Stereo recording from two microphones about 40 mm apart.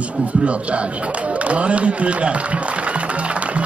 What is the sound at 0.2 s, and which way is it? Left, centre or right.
A man's voice, right.